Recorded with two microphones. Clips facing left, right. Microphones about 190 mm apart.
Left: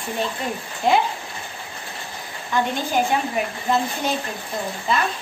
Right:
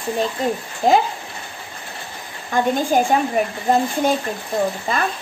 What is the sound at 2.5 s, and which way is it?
Speech, 50° right (ahead or behind).